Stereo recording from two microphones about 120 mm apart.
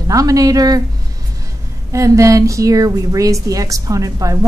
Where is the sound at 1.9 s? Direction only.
25° right (ahead or behind).